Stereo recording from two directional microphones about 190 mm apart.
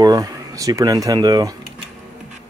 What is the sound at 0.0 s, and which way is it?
Speech, 20° right (ahead or behind).